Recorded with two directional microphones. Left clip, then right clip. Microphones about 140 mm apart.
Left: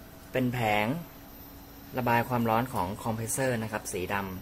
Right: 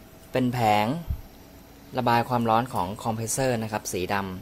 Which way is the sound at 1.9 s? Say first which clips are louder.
Right 4 dB; 30° right (ahead or behind).